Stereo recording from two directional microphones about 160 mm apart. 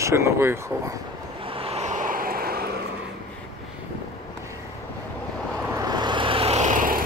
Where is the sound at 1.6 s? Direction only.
40° right (ahead or behind); by 2.7 s 70° right (ahead or behind).